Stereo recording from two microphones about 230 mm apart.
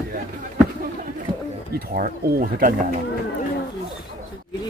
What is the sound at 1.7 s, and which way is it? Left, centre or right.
Speech, right.